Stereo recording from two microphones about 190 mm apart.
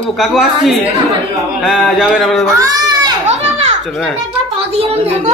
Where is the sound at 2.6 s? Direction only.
20° right (ahead or behind).